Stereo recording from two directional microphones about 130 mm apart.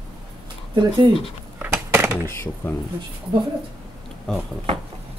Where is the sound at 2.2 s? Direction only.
20° left (ahead or behind).